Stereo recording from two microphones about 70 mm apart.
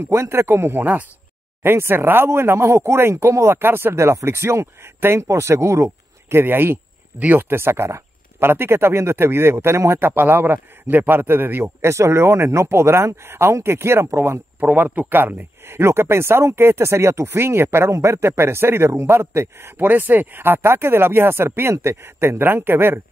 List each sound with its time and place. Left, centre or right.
0.0 s speech: right
6.3 s speech: right